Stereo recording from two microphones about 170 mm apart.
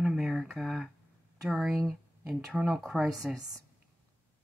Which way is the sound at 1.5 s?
Centre (ahead or behind).